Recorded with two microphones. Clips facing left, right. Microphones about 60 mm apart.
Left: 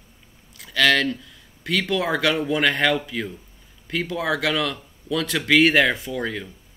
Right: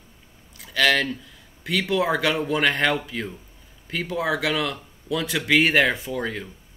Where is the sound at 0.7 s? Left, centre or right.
Right.